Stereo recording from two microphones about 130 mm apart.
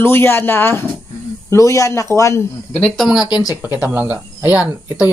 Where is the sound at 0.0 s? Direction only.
20° left (ahead or behind).